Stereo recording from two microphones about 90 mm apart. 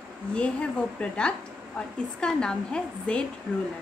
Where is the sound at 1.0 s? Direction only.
10° left (ahead or behind).